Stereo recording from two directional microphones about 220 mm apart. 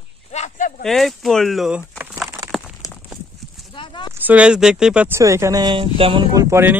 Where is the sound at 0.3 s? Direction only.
30° left (ahead or behind).